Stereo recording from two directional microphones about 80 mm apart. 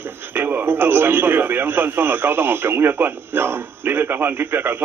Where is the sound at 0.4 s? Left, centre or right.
Right.